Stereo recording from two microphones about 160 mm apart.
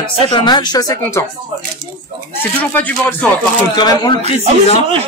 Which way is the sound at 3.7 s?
25° left (ahead or behind).